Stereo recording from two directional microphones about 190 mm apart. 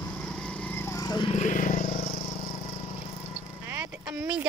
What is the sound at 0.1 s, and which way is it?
Lawn mower, 5° left (ahead or behind).